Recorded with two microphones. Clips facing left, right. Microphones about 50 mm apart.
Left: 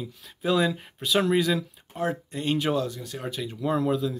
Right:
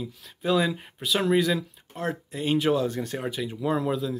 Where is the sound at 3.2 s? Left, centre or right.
Centre.